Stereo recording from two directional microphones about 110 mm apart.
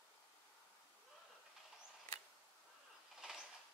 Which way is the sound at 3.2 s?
5° right (ahead or behind).